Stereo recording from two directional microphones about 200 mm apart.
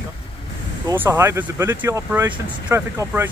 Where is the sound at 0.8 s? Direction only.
10° right (ahead or behind).